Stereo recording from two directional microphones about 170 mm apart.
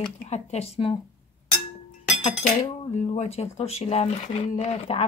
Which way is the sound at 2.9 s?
40° left (ahead or behind).